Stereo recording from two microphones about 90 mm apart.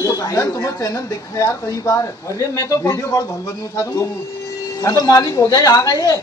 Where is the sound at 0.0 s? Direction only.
40° left (ahead or behind).